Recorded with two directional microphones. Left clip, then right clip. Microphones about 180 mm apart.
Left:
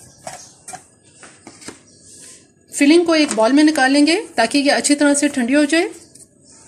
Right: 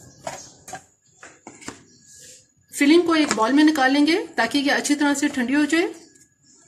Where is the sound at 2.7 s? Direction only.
35° left (ahead or behind).